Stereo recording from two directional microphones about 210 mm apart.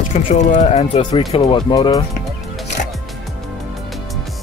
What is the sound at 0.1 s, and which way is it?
Speech, 35° left (ahead or behind).